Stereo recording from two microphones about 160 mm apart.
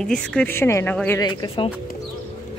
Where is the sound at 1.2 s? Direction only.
25° left (ahead or behind).